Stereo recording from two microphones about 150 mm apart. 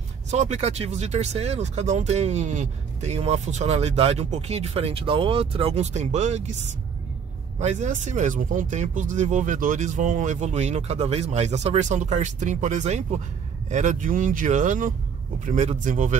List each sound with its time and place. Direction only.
0.3 s speech: 50° right (ahead or behind)
7.5 s speech: 50° right (ahead or behind)